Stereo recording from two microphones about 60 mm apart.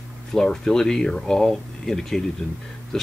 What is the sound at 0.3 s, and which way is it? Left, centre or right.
Speech, centre.